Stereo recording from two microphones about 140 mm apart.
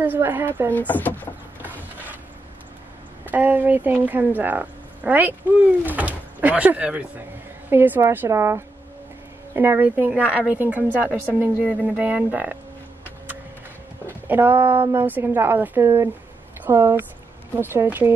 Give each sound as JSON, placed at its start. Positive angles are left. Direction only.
{"t": 0.0, "sound": "a woman's voice", "side_deg": -15}
{"t": 0.7, "sound": "speech", "side_deg": 10}
{"t": 3.3, "sound": "a woman's voice", "side_deg": -10}
{"t": 14.2, "sound": "a woman's voice", "side_deg": -15}